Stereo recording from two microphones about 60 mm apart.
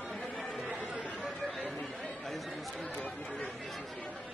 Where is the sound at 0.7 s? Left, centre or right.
Right.